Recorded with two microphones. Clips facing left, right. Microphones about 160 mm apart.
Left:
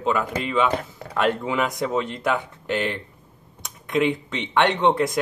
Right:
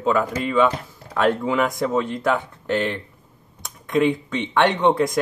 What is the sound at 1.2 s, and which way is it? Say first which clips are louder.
Speech: right 3 dB; 15° left (ahead or behind).